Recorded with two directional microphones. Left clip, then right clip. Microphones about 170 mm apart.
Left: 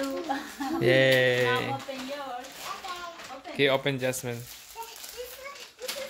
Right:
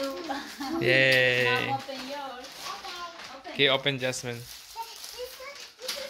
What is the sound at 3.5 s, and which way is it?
Speech, 10° left (ahead or behind).